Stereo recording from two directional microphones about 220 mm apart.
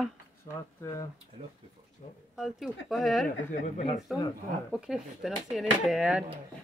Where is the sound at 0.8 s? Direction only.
15° left (ahead or behind).